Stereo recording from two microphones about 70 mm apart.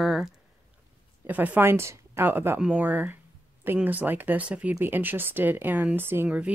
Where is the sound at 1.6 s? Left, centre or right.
Right; by 4.8 s centre.